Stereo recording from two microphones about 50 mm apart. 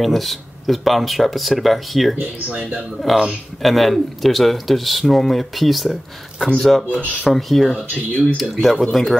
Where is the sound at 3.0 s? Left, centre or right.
Centre.